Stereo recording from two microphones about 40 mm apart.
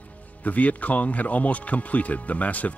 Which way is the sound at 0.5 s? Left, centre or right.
Left.